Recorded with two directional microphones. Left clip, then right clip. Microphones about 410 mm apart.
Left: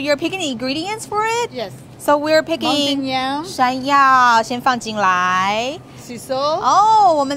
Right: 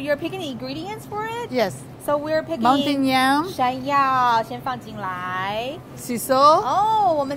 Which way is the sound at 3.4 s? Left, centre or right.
Left.